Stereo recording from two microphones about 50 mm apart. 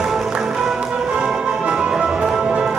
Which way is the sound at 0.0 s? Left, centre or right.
Centre.